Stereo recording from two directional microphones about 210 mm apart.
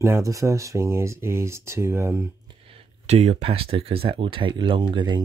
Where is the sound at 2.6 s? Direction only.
30° right (ahead or behind).